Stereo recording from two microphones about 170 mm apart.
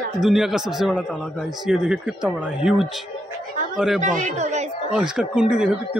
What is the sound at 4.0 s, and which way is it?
Speech, 45° right (ahead or behind).